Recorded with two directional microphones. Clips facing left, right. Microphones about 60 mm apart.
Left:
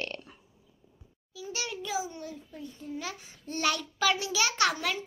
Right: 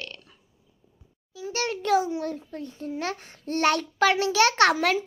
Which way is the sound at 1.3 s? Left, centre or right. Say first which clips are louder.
Right 8 dB; right.